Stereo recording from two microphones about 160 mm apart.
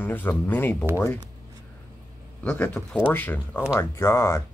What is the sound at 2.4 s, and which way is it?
Speech, 15° left (ahead or behind).